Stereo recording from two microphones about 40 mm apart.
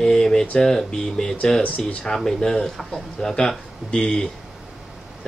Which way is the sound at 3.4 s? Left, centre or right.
Centre.